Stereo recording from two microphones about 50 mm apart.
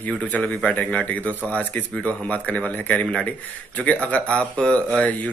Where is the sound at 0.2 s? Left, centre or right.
Left.